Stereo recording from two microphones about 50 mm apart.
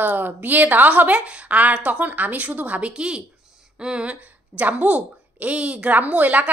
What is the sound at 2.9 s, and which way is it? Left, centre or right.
A woman's voice, centre.